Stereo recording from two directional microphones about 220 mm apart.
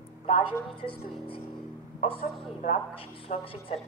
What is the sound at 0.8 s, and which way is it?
Speech, 25° left (ahead or behind).